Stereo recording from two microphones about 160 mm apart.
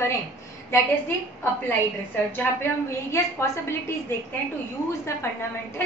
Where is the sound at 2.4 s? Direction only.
15° left (ahead or behind).